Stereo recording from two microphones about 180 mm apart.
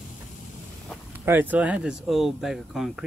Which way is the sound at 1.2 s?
10° right (ahead or behind).